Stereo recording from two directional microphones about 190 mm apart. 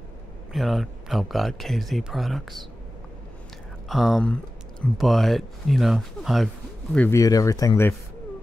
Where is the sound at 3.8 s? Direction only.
Centre (ahead or behind); by 7.9 s 15° left (ahead or behind).